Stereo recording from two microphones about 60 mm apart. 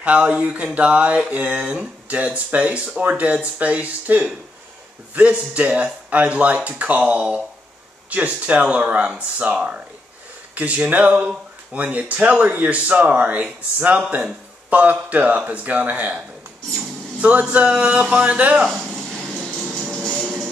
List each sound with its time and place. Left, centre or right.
0.0 s speech: right
17.2 s speech: right
19.4 s music: centre
19.9 s music: centre